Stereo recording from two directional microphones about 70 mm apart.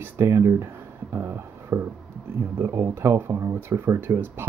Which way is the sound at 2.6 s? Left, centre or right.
Right.